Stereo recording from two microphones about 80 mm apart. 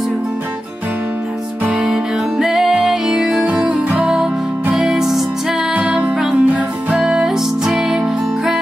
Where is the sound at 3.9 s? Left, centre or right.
Centre.